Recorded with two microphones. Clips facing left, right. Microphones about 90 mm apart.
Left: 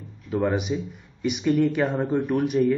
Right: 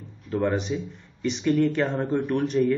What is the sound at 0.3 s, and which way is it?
Speech, 5° left (ahead or behind).